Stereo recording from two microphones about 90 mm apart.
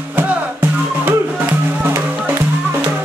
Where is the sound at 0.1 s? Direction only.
20° right (ahead or behind).